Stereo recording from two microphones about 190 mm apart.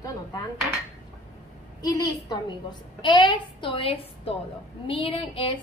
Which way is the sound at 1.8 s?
20° left (ahead or behind).